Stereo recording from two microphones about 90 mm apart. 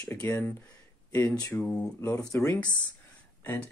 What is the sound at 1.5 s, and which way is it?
Speech, 15° left (ahead or behind).